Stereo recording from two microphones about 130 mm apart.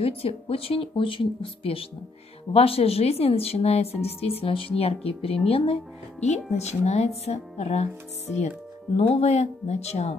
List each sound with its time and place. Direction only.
0.0 s speech: 50° left (ahead or behind)
6.2 s speech: 60° left (ahead or behind)
8.9 s speech: 50° left (ahead or behind)